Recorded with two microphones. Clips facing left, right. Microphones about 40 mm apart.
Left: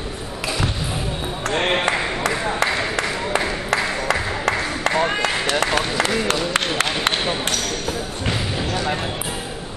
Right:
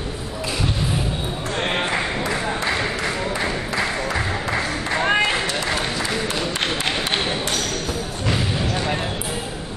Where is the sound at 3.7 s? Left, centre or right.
Left.